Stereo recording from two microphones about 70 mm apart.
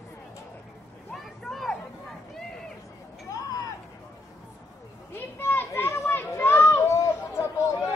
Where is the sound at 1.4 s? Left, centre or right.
Centre.